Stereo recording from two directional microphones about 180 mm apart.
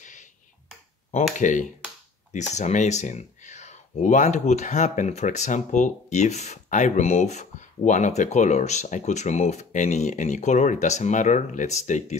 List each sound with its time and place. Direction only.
1.4 s speech: 45° left (ahead or behind)